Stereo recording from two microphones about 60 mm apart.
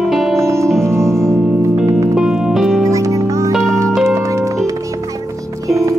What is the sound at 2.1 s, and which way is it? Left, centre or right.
Music, centre.